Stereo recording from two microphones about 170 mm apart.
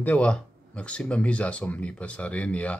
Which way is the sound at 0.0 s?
10° left (ahead or behind).